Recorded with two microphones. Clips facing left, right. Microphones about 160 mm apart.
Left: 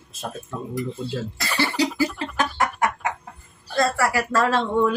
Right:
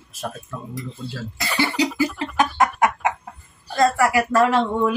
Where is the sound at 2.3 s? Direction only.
20° right (ahead or behind).